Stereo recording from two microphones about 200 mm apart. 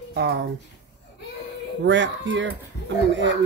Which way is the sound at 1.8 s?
65° right (ahead or behind).